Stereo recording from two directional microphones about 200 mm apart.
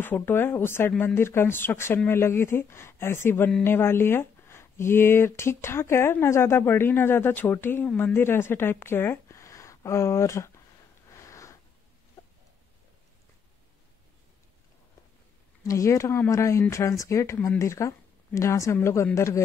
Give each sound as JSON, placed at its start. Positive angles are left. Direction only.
{"t": 0.0, "sound": "speech", "side_deg": 10}
{"t": 11.1, "sound": "a sound", "side_deg": 15}
{"t": 12.2, "sound": "chicken", "side_deg": 10}
{"t": 15.6, "sound": "speech", "side_deg": 15}